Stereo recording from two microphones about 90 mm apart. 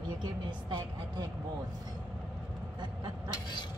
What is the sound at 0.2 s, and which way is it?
Vehicle, 50° right (ahead or behind).